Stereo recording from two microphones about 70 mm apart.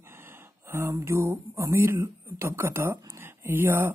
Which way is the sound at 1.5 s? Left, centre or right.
Right.